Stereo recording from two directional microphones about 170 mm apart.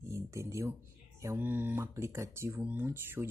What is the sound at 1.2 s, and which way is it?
Speech, 15° right (ahead or behind).